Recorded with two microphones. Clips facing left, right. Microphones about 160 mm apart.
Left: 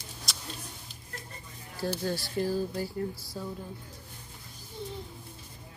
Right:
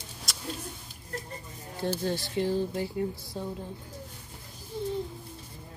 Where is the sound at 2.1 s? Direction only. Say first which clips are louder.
Right 1 dB; 20° right (ahead or behind).